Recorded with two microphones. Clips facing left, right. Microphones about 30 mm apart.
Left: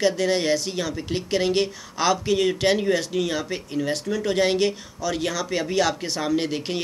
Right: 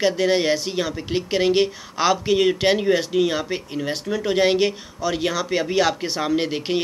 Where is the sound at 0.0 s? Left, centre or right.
Centre.